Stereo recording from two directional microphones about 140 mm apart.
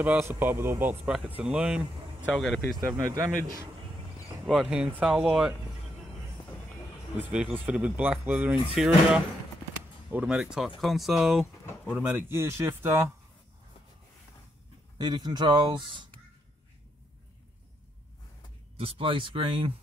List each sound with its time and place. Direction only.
0.0 s a man's voice: 15° right (ahead or behind); by 2.6 s 5° left (ahead or behind)
2.7 s speech: 25° right (ahead or behind)
4.5 s speech: 5° right (ahead or behind)
7.2 s a man's voice: 10° right (ahead or behind)
15.0 s speech: 30° right (ahead or behind)
18.8 s speech: 40° right (ahead or behind)